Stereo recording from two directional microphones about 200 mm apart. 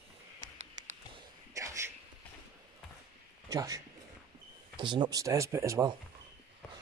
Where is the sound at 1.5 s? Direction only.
15° right (ahead or behind).